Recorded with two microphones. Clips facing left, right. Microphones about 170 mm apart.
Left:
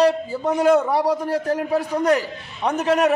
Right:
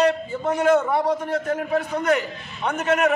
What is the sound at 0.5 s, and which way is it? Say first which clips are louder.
A man's voice: left 2 dB; 35° left (ahead or behind).